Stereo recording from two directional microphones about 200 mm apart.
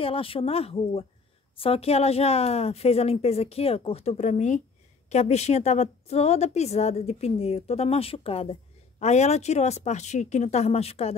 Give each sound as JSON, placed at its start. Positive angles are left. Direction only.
{"t": 0.0, "sound": "a woman's voice", "side_deg": 25}